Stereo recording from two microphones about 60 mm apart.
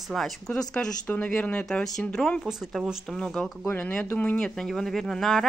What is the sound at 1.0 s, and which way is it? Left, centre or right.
Speech, left.